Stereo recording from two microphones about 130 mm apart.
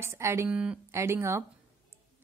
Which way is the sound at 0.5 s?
10° right (ahead or behind).